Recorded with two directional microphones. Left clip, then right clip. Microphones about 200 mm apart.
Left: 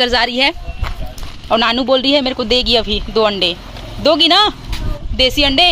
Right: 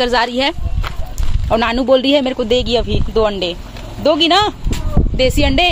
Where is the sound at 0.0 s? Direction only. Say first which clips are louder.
Left 1 dB; 10° right (ahead or behind).